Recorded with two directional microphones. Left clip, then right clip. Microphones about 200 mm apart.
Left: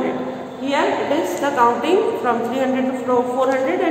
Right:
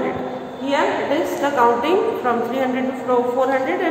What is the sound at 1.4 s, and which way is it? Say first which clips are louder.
A woman's voice: right 1 dB; centre (ahead or behind).